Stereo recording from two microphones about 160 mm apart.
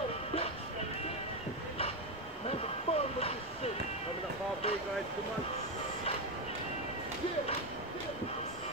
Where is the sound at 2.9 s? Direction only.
40° left (ahead or behind).